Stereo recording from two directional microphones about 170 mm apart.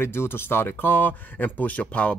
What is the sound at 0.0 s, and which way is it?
Speech, 15° left (ahead or behind).